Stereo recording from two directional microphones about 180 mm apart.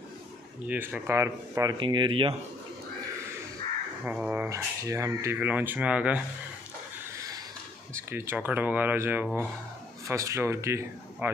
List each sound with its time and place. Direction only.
0.7 s speech: 10° right (ahead or behind); by 2.3 s 30° right (ahead or behind)
4.0 s speech: 5° right (ahead or behind)
7.9 s speech: 15° right (ahead or behind)